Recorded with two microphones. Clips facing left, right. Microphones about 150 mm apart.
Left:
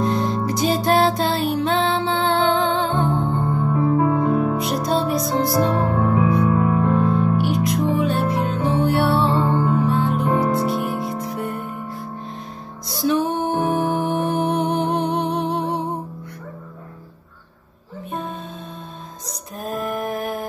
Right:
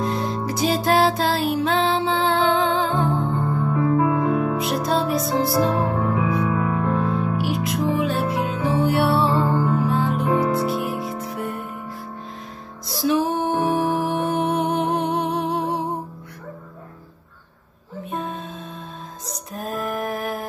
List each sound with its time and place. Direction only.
0.0 s music: centre (ahead or behind)
3.3 s music: 30° left (ahead or behind)
4.6 s music: centre (ahead or behind)
6.5 s music: 15° left (ahead or behind)
6.9 s music: centre (ahead or behind)
12.8 s music: centre (ahead or behind)
18.1 s music: centre (ahead or behind)